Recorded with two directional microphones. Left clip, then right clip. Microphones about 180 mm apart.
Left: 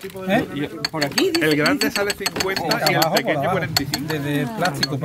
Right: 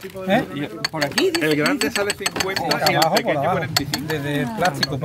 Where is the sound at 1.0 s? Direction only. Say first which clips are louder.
Even; 45° right (ahead or behind).